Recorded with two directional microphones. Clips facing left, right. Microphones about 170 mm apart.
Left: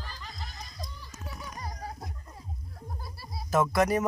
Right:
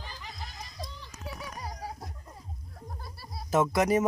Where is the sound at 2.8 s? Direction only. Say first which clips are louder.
Even; 5° left (ahead or behind).